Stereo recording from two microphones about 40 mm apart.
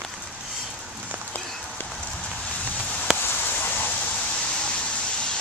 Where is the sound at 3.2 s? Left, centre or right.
Left.